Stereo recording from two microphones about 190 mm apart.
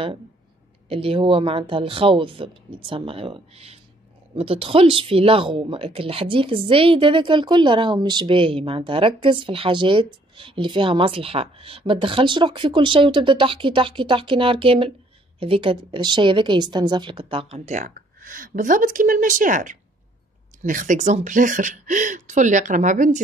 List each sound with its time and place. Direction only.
0.8 s speech: 30° right (ahead or behind)